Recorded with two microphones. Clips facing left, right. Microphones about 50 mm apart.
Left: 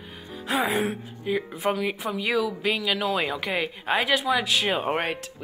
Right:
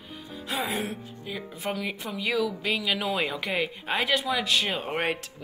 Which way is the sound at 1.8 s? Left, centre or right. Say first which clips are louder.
Left 5 dB; centre.